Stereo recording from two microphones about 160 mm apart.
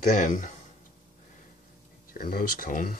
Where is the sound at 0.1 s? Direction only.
50° left (ahead or behind).